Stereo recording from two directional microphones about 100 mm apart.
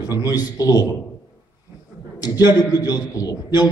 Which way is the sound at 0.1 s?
40° left (ahead or behind).